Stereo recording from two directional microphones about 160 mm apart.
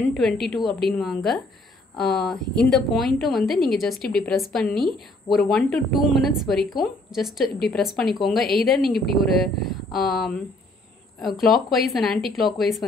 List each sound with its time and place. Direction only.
0.1 s a woman's voice: centre (ahead or behind)